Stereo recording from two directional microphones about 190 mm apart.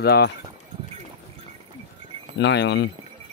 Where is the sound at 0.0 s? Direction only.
60° left (ahead or behind).